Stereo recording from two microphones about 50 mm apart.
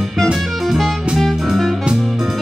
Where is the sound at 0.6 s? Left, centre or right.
Centre.